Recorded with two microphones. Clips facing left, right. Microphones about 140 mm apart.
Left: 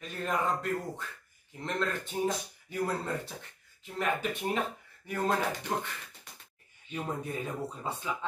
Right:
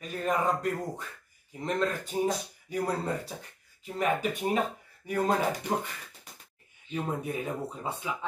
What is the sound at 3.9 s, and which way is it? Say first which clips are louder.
Speech: right 3 dB; 10° right (ahead or behind).